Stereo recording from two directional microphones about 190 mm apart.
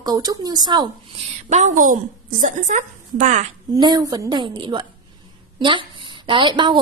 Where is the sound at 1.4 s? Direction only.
40° right (ahead or behind).